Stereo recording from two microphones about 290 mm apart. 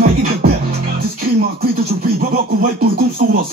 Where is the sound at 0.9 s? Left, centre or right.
Right.